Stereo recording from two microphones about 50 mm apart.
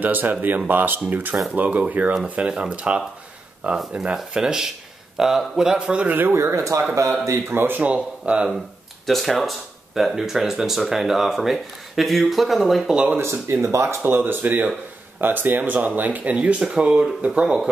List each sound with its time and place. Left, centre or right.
0.0 s speech: right; by 5.8 s centre
5.8 s speech: right
6.3 s speech: right
7.5 s speech: right
7.8 s speech: right
9.0 s speech: centre
12.8 s speech: right
13.2 s speech: right
14.0 s speech: right; by 17.6 s centre